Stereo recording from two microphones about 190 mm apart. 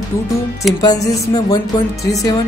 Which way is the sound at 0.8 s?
20° left (ahead or behind).